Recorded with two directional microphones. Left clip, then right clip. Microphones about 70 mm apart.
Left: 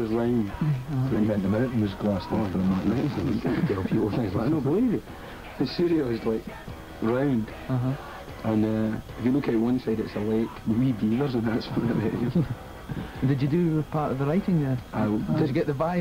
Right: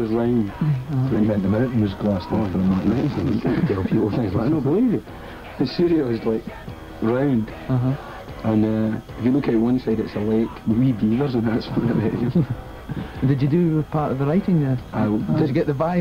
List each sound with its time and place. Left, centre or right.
0.0 s speech: right
13.2 s speech: right
13.9 s speech: centre